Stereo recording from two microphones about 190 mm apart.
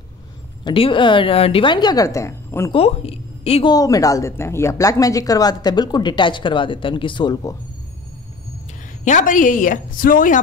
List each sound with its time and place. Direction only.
0.7 s a woman's voice: 25° left (ahead or behind)
2.7 s a woman's voice: 30° left (ahead or behind)
3.7 s a woman's voice: 20° left (ahead or behind)
9.0 s a woman's voice: 40° left (ahead or behind)